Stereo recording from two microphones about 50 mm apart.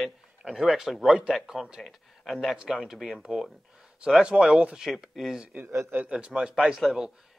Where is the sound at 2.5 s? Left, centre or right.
Centre.